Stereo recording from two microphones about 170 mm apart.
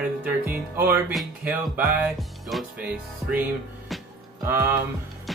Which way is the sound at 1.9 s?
5° right (ahead or behind).